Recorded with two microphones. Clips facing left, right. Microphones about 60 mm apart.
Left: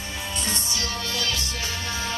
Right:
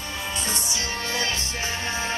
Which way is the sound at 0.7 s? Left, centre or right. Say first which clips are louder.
Right 1 dB; right.